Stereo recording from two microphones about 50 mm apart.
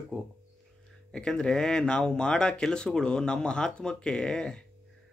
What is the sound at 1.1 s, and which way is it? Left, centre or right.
Speech, centre.